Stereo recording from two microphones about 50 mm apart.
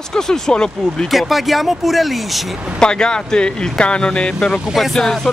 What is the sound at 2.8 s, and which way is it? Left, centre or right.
Speech, centre.